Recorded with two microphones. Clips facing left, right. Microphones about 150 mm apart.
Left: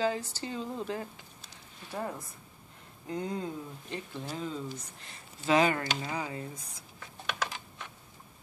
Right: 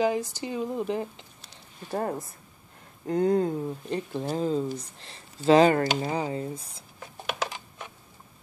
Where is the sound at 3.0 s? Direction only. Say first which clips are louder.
Right 11 dB; 60° right (ahead or behind).